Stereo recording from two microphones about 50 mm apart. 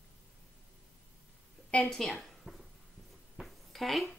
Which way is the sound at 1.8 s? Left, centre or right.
Centre.